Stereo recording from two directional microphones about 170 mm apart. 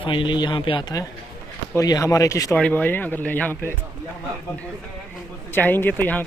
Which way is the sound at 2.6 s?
10° left (ahead or behind).